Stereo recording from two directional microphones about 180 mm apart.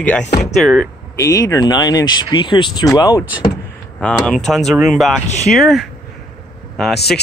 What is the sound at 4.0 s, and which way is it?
Speech, 5° left (ahead or behind).